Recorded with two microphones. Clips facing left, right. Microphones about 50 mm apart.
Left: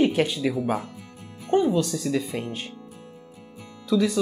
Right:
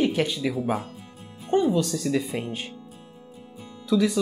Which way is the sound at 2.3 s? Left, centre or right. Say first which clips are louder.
Even; centre.